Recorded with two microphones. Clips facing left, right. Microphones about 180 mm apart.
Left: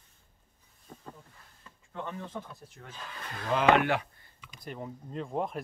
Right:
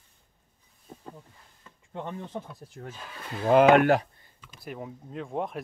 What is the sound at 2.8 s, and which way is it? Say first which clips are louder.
Speech: right 12 dB; 35° right (ahead or behind).